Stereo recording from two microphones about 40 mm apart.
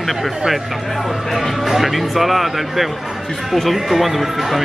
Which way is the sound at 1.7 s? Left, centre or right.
Centre.